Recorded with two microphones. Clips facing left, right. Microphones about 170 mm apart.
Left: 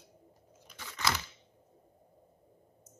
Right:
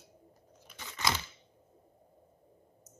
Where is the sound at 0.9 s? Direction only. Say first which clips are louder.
Even; 20° right (ahead or behind).